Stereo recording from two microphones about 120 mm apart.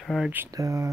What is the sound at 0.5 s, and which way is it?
Speech, 30° right (ahead or behind).